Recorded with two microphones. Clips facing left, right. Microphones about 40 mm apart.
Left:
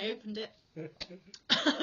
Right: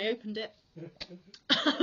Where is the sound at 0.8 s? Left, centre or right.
Left.